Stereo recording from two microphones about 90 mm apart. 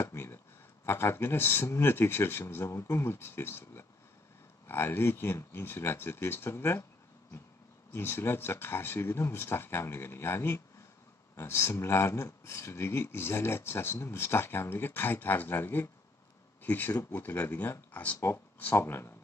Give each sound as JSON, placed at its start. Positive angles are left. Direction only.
{"t": 0.0, "sound": "a sound", "side_deg": 25}
{"t": 0.8, "sound": "speech", "side_deg": 25}
{"t": 7.9, "sound": "speech", "side_deg": 25}